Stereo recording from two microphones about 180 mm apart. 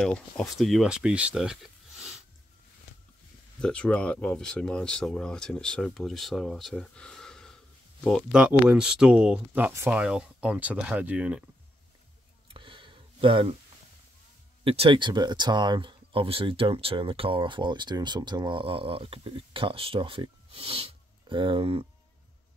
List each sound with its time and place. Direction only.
0.0 s speech: 5° left (ahead or behind)
3.5 s speech: 5° left (ahead or behind)
12.5 s a sound: 25° right (ahead or behind)
14.6 s speech: 30° right (ahead or behind)